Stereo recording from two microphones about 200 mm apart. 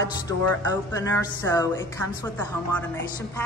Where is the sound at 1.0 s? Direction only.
15° left (ahead or behind).